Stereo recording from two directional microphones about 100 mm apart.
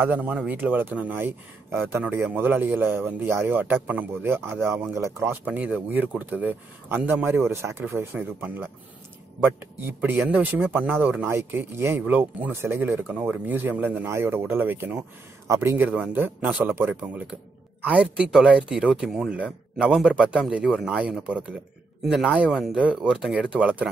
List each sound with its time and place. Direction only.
0.0 s speech: 15° right (ahead or behind)
13.1 s speech: 15° right (ahead or behind)
15.4 s speech: 30° right (ahead or behind)
15.7 s speech: 20° right (ahead or behind)
17.8 s speech: 10° right (ahead or behind)